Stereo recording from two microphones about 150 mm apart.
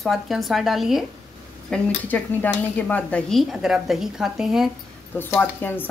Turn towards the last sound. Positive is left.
turn(degrees=15)  # may be behind; listen again after turning